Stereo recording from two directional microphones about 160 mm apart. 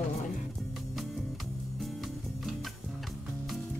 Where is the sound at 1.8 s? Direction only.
Centre (ahead or behind).